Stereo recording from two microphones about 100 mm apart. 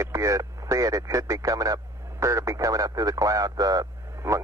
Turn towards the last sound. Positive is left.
turn(degrees=-35)  # may be behind; listen again after turning